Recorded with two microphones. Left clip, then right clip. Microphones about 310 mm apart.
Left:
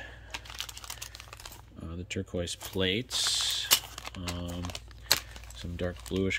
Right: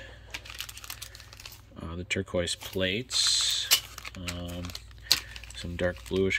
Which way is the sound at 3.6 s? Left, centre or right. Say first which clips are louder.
Right 1 dB; left.